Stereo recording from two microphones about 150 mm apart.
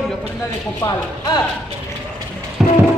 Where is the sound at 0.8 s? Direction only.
25° left (ahead or behind).